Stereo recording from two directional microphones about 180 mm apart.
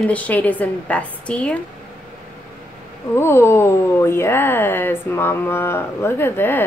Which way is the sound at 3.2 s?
15° left (ahead or behind).